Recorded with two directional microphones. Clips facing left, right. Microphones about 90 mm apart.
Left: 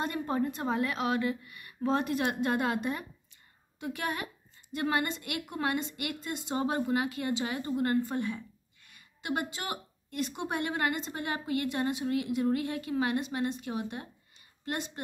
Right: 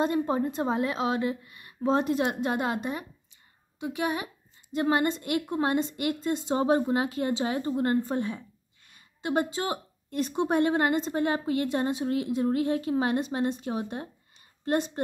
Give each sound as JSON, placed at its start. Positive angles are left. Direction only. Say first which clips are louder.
{"t": 0.0, "sound": "a woman's voice", "louder": "right 5 dB", "side_deg": -25}